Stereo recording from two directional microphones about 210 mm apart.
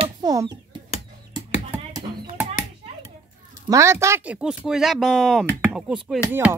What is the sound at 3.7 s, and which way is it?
Speech, 15° right (ahead or behind).